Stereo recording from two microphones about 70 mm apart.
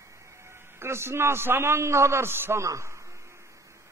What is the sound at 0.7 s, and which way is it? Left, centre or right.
A man's voice, right.